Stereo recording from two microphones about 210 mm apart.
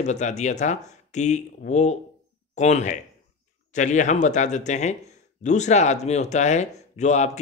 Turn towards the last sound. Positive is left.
turn(degrees=35)  # may be behind; listen again after turning